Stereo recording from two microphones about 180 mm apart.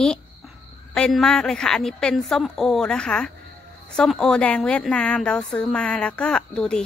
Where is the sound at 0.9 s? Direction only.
5° left (ahead or behind).